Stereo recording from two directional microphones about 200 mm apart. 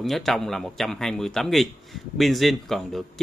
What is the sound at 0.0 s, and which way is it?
Speech, centre (ahead or behind).